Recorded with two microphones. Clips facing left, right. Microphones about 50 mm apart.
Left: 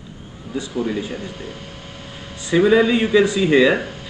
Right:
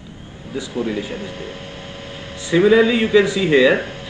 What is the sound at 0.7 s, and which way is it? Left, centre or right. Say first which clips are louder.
Speech: right 1 dB; right.